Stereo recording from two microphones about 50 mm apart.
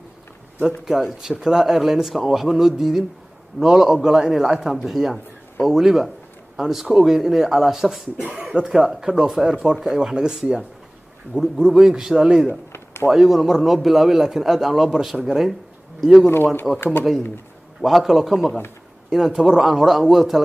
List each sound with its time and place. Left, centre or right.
0.7 s a man's voice: centre
8.5 s speech: centre
12.7 s a sound: left
13.1 s a man's voice: centre